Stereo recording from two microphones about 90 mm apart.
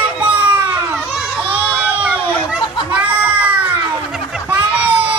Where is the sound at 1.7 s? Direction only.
15° right (ahead or behind).